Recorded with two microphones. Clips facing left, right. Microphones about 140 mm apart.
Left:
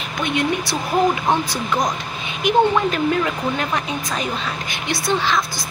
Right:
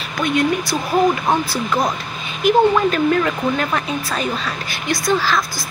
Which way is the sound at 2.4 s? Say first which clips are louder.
Right 3 dB; 15° left (ahead or behind).